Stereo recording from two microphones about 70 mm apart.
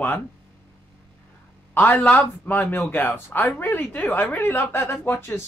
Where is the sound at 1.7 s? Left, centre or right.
Left.